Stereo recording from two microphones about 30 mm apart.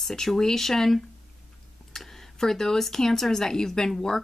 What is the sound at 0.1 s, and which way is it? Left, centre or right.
Speech, centre.